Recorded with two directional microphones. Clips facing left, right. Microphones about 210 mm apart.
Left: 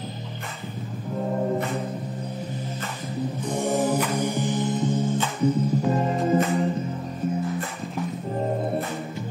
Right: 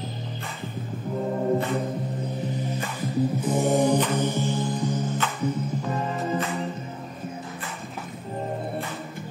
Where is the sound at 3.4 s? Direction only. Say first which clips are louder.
Right 1 dB; 5° right (ahead or behind); by 5.0 s 25° left (ahead or behind).